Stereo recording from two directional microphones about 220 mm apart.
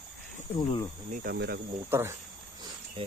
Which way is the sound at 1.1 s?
45° right (ahead or behind).